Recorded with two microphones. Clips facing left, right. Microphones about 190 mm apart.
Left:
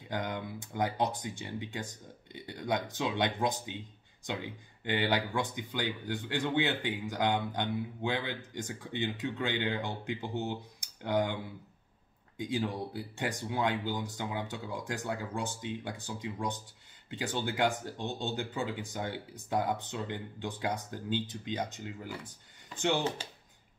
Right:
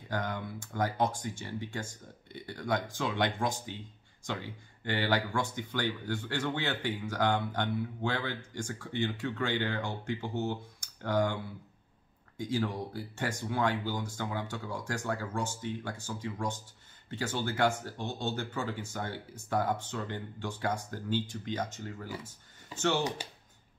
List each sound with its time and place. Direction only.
0.1 s speech: 20° left (ahead or behind)
12.4 s speech: 20° left (ahead or behind)